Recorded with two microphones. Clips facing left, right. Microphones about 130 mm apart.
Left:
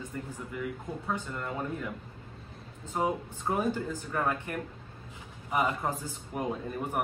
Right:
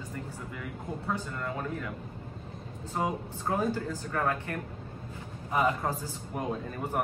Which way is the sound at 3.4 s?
15° left (ahead or behind).